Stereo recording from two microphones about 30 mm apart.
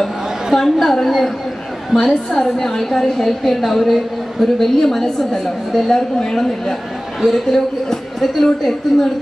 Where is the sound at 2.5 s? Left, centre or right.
Centre.